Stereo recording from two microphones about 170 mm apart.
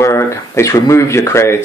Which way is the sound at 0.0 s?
15° left (ahead or behind).